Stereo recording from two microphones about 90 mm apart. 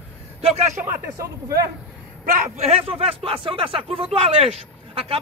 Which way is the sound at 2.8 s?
90° right.